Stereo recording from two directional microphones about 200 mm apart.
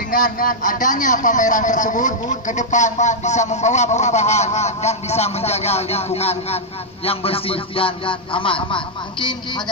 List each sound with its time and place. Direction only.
0.1 s a man's voice: 45° left (ahead or behind); by 9.3 s 25° left (ahead or behind)